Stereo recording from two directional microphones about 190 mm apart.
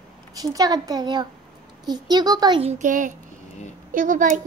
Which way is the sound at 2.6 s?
40° right (ahead or behind).